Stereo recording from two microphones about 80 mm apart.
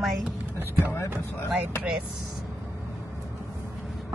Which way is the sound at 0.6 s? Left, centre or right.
Right.